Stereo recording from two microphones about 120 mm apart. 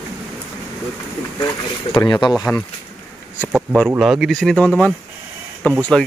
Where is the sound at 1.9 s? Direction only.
35° left (ahead or behind).